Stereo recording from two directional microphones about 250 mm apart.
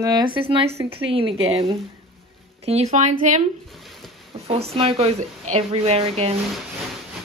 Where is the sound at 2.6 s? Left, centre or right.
Right.